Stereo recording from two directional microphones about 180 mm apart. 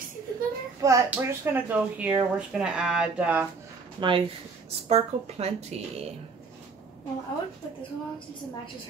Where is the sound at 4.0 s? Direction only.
25° right (ahead or behind).